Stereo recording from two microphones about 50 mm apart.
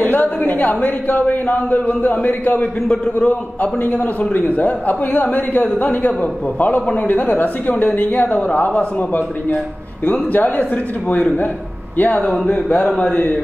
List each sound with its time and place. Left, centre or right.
0.0 s a man's voice: left
4.3 s a man's voice: left
13.1 s a man's voice: left